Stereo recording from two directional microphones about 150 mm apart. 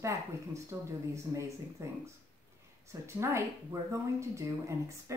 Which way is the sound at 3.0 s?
15° right (ahead or behind).